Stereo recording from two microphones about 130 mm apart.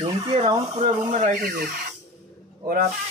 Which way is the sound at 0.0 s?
45° right (ahead or behind).